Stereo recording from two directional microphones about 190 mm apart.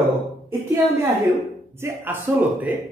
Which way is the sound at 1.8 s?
15° right (ahead or behind).